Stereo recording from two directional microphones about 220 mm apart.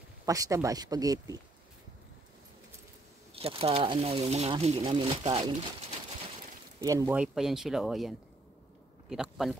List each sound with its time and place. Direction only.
0.2 s speech: 15° right (ahead or behind)
3.3 s speech: 25° right (ahead or behind)
6.8 s speech: 15° right (ahead or behind)
9.1 s speech: centre (ahead or behind)